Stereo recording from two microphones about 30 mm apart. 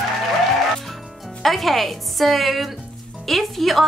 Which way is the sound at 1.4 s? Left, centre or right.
Centre.